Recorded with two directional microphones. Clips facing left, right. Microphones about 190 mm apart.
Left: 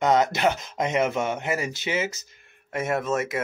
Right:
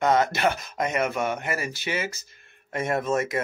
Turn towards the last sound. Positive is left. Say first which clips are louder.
# right 1 dB
turn(degrees=5)  # may be behind; listen again after turning